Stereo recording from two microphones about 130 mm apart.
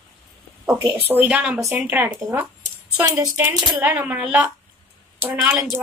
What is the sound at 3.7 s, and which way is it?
A woman's voice, 10° right (ahead or behind).